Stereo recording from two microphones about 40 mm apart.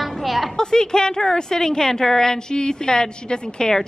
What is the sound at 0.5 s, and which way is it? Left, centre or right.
A woman's voice, centre.